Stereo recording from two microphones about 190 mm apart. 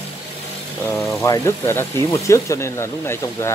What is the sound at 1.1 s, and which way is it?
Speech, 15° left (ahead or behind).